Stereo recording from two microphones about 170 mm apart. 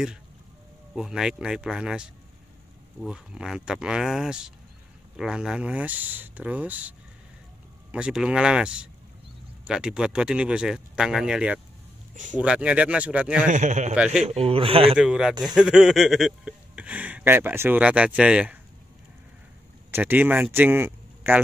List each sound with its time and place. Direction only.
0.9 s speech: 5° right (ahead or behind)
13.5 s speech: 45° right (ahead or behind)
13.9 s speech: 5° right (ahead or behind)
14.2 s a man's voice: 35° right (ahead or behind)
15.0 s speech: 5° right (ahead or behind)
19.9 s speech: 10° right (ahead or behind)